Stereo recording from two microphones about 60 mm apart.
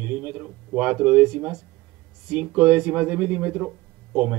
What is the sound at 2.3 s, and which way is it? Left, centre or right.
A man's voice, centre.